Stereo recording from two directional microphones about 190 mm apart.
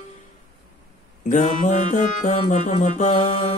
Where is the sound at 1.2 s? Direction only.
40° left (ahead or behind).